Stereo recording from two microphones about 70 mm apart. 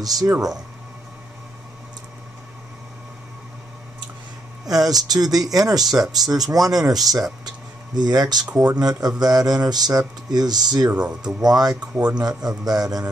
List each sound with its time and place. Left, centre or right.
0.0 s speech: right
4.6 s speech: right
7.4 s speech: right
10.9 s speech: centre
11.2 s speech: right